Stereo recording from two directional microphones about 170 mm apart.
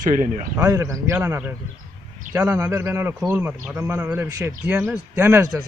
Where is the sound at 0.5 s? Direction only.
15° right (ahead or behind).